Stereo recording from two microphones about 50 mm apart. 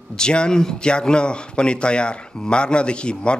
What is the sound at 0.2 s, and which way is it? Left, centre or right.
Speech, centre.